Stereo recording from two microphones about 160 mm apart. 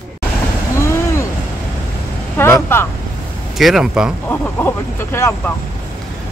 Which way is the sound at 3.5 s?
Centre (ahead or behind).